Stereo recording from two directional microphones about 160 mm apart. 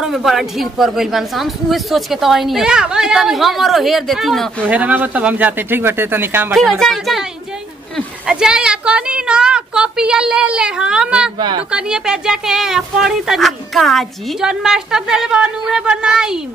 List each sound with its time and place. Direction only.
0.0 s speech: centre (ahead or behind)
6.5 s speech: centre (ahead or behind)
8.3 s speech: 5° right (ahead or behind)
11.3 s speech: 30° right (ahead or behind)
11.7 s speech: 5° right (ahead or behind)